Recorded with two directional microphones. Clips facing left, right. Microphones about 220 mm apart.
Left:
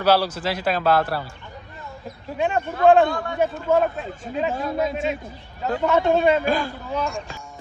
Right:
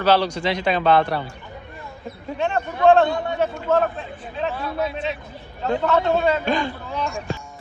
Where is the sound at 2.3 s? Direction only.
10° left (ahead or behind).